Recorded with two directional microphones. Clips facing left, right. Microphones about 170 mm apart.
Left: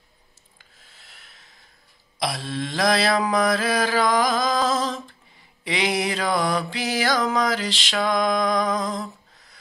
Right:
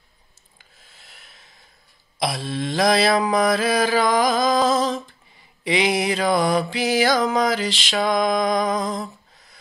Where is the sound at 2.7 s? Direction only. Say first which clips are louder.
Right 3 dB; 10° right (ahead or behind).